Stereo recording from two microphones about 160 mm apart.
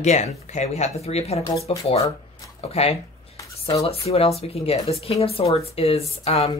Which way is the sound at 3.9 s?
40° left (ahead or behind).